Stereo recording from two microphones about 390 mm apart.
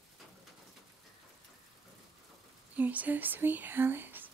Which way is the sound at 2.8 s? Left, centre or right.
Centre.